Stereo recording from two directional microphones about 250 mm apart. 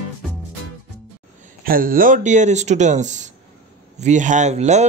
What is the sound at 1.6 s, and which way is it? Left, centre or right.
Speech, right.